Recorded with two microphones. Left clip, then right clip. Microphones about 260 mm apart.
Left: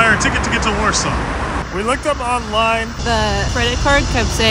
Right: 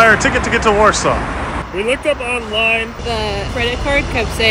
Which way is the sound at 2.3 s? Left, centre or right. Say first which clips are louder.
Left 2 dB; centre.